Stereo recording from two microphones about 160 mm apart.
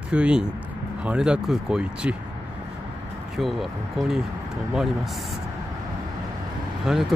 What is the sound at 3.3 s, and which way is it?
Speech, centre (ahead or behind).